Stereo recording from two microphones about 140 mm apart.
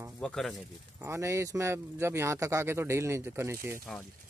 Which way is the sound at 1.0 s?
20° right (ahead or behind).